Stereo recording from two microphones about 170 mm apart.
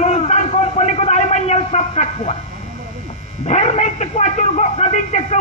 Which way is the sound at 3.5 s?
40° left (ahead or behind).